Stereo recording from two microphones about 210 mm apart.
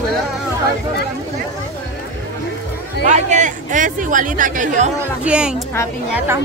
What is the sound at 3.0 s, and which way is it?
Speech, 35° right (ahead or behind).